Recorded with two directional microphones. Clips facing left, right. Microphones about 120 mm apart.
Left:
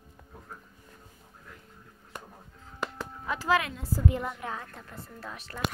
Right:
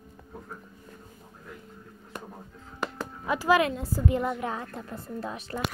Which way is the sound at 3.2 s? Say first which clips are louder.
Right 4 dB; 10° right (ahead or behind).